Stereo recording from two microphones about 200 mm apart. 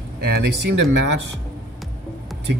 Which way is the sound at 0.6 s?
60° right (ahead or behind).